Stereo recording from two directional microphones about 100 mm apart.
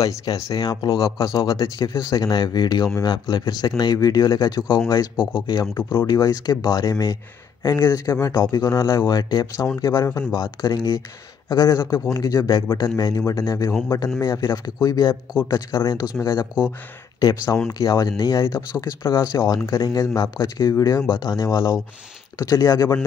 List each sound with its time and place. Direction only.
0.0 s speech: 40° left (ahead or behind)
7.7 s speech: 35° left (ahead or behind)
9.8 s speech: 30° left (ahead or behind)
10.3 s speech: 45° left (ahead or behind)
19.3 s speech: 40° left (ahead or behind)